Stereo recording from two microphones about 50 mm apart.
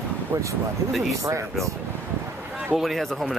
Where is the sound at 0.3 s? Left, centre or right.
Right.